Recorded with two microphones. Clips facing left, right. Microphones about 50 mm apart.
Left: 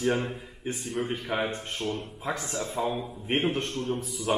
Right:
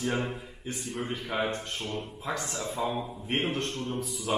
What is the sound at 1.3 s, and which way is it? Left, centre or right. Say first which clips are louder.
Speech: right 1 dB; left.